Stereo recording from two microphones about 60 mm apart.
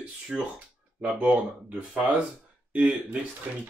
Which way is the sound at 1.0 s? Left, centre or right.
Right.